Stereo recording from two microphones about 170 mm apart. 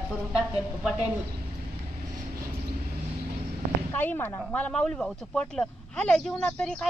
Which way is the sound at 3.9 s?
10° left (ahead or behind).